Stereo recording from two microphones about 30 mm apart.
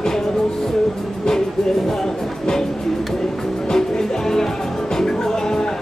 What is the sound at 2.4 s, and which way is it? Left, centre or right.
Music, centre.